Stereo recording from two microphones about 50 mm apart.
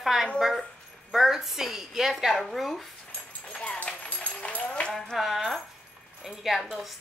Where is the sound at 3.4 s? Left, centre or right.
Left.